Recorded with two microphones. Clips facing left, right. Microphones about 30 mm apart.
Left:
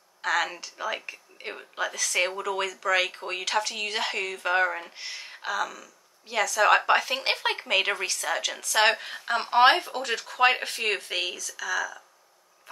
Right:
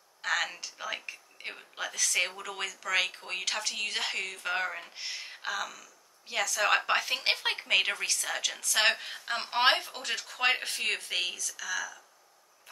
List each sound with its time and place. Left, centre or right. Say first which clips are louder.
0.2 s a woman's voice: left 4 dB; centre